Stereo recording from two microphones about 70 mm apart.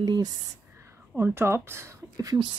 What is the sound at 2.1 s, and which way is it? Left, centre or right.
Speech, right.